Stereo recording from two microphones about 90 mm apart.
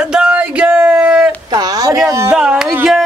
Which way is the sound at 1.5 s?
45° right (ahead or behind).